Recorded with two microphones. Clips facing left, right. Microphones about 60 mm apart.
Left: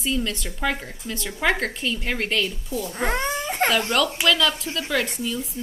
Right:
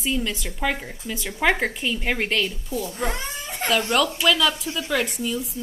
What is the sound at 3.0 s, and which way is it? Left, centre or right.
Crying, left.